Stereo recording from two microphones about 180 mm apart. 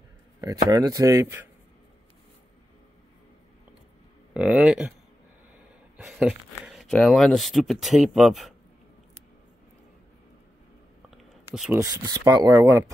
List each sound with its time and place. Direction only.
0.4 s speech: 20° right (ahead or behind)
4.3 s speech: 5° right (ahead or behind)
5.9 s speech: 5° right (ahead or behind)
11.7 s speech: 20° right (ahead or behind)